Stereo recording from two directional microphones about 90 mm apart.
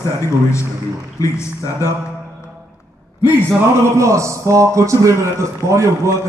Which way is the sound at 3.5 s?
30° right (ahead or behind).